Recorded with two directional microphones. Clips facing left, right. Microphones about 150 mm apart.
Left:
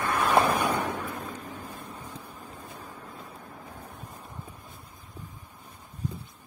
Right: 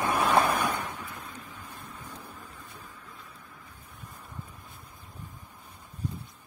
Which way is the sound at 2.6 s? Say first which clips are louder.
Left 5 dB; 40° left (ahead or behind).